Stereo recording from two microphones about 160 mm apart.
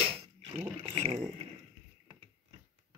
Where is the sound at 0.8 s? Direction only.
35° right (ahead or behind).